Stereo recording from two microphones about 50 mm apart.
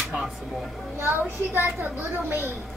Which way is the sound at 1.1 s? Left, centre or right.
Right.